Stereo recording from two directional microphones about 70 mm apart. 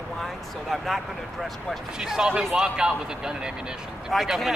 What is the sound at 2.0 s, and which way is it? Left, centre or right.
Speech, centre.